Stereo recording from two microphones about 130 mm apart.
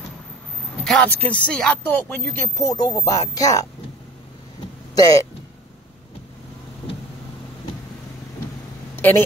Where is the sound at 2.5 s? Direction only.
30° left (ahead or behind).